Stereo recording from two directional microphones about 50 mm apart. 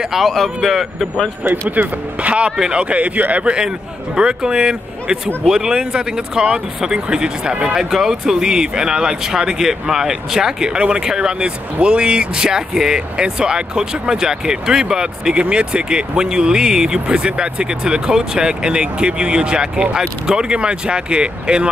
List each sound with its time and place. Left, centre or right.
0.2 s speech: centre
1.8 s speech: right
3.5 s speech: centre